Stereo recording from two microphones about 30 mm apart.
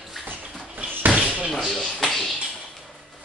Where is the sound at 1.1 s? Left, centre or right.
Right.